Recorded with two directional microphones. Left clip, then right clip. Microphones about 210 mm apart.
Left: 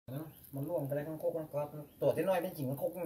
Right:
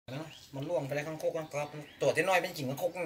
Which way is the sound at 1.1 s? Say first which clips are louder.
Right 2 dB; 15° left (ahead or behind).